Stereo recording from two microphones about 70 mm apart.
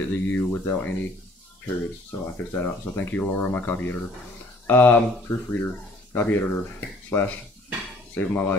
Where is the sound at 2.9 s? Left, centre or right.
Left.